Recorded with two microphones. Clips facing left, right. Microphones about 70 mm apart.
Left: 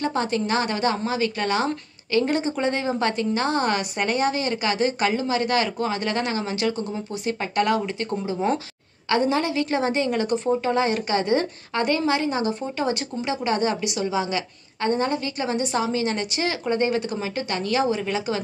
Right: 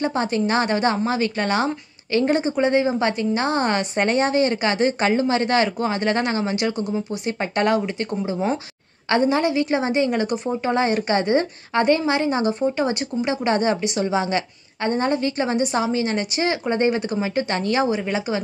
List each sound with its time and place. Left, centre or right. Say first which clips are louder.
0.0 s a woman's voice: right 2 dB; right
8.1 s a woman's voice: left 1 dB; centre
10.7 s a woman's voice: right 6 dB; right